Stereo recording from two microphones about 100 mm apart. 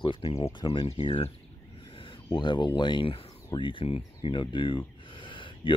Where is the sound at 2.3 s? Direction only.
50° left (ahead or behind).